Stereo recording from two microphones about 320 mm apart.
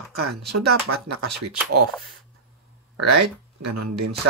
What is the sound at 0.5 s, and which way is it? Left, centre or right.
Speech, right.